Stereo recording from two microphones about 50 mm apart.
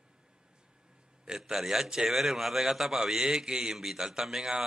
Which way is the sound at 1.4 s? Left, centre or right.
Centre.